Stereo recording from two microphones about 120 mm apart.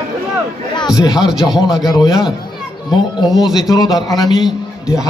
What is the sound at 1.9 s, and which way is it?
Speech, 35° left (ahead or behind).